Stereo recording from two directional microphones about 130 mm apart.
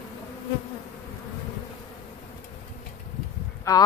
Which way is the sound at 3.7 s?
25° left (ahead or behind).